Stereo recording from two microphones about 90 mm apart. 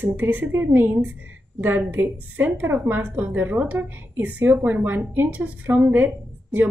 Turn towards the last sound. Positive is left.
turn(degrees=-20)  # may be behind; listen again after turning